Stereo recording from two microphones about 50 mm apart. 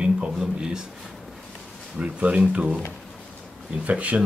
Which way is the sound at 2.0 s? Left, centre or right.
Right.